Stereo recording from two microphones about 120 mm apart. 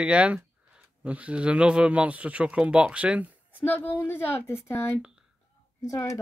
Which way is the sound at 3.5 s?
15° left (ahead or behind).